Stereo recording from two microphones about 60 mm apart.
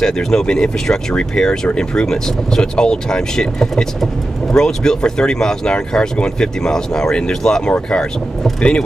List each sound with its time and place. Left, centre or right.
0.0 s speech: centre